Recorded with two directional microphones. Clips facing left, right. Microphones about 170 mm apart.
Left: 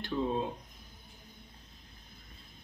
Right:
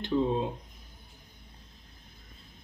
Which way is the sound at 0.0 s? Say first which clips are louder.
Right 5 dB; 20° right (ahead or behind).